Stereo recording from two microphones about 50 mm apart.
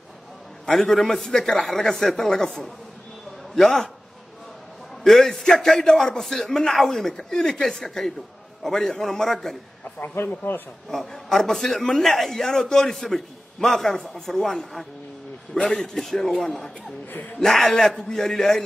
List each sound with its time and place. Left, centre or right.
0.7 s a man's voice: centre
5.0 s a man's voice: centre
9.9 s speech: left
10.9 s a man's voice: centre
17.1 s speech: left
17.4 s a man's voice: centre